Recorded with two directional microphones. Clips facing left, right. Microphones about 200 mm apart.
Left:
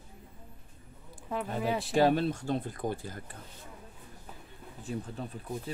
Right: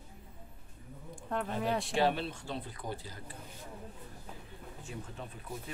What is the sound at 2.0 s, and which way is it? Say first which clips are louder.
Speech: left 8 dB; 45° left (ahead or behind).